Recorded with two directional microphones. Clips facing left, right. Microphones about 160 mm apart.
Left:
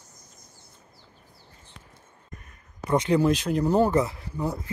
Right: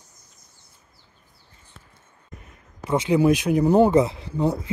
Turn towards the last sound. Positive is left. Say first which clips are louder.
# right 6 dB
turn(degrees=-25)  # may be behind; listen again after turning